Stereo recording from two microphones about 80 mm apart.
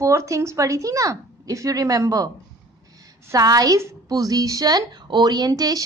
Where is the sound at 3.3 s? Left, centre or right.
Right.